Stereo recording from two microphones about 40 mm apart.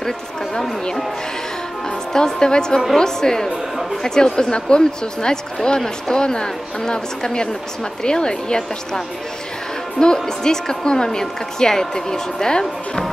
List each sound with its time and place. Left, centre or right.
2.1 s speech: centre